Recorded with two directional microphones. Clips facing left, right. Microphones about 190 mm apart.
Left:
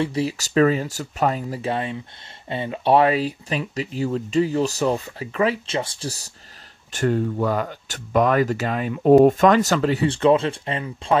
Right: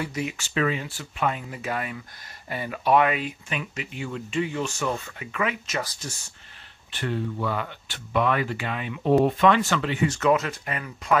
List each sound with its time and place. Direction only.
0.0 s speech: 30° left (ahead or behind)